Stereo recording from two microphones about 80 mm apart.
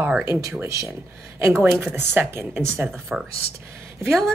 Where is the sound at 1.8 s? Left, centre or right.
Right.